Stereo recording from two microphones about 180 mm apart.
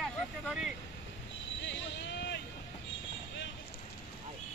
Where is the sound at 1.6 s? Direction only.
80° left.